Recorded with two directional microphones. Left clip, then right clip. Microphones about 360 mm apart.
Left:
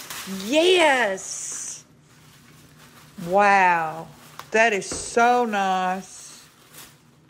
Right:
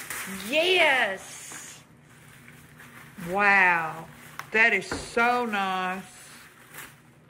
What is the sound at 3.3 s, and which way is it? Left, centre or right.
Speech, centre.